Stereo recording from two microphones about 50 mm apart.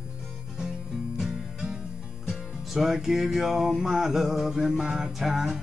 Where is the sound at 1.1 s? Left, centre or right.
Centre.